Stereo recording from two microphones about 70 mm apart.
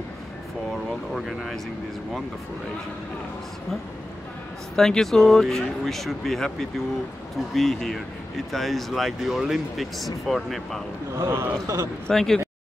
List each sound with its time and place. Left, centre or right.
1.2 s speech: centre
4.7 s speech: centre
11.2 s speech: right
12.1 s speech: centre